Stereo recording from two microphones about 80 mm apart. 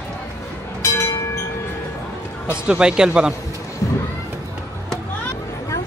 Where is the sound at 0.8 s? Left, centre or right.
Left.